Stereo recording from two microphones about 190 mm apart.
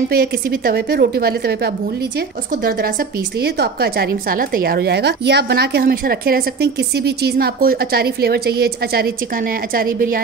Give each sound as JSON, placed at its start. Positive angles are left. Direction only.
{"t": 0.1, "sound": "a woman's voice", "side_deg": -50}